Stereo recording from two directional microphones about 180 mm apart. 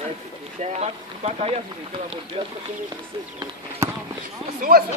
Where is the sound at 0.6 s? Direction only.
35° right (ahead or behind).